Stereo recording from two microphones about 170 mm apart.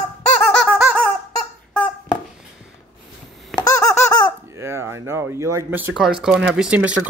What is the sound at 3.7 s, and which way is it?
Squeak, 20° left (ahead or behind).